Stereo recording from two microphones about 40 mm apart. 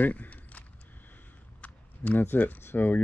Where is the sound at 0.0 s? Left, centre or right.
Left.